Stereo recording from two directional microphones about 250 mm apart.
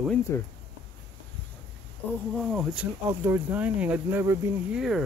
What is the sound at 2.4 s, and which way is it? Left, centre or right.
Speech, centre.